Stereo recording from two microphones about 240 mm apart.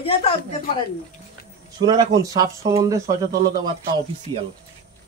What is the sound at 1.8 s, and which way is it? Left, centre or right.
Speech, centre.